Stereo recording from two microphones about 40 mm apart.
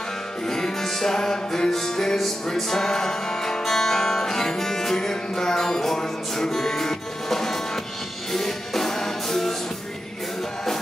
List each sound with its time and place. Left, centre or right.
0.5 s music: centre